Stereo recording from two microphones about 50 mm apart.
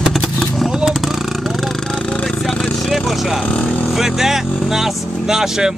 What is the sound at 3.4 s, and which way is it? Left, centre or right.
Speech, left.